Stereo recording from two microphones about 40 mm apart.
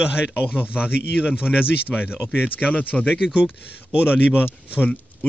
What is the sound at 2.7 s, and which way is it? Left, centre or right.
Speech, left.